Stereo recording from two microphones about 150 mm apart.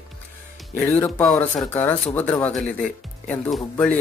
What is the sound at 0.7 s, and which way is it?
Speech, 10° left (ahead or behind).